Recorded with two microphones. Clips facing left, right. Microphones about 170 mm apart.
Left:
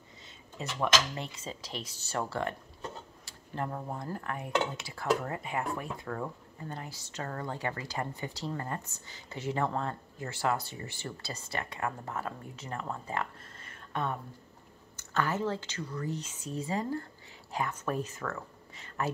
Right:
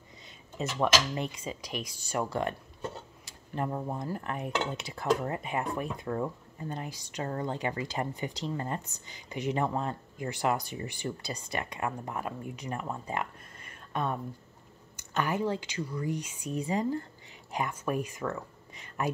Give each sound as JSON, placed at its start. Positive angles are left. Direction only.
{"t": 0.6, "sound": "speech", "side_deg": -20}